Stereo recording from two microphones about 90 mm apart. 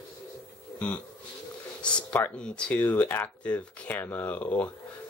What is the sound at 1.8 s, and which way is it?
Speech, 15° left (ahead or behind).